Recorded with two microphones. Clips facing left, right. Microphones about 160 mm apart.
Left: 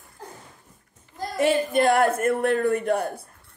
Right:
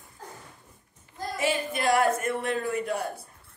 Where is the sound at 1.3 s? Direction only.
55° left (ahead or behind).